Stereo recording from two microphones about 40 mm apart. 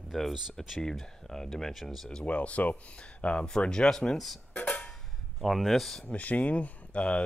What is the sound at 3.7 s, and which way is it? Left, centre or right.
Speech, centre.